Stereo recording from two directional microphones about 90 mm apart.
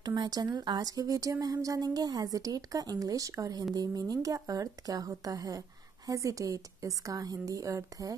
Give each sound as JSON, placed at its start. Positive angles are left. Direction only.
{"t": 0.0, "sound": "a woman's voice", "side_deg": -50}